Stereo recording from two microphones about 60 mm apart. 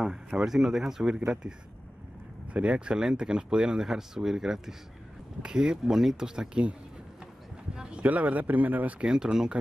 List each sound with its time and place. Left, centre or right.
0.0 s speech: centre
2.5 s speech: right
7.7 s speech: centre
9.0 s speech: centre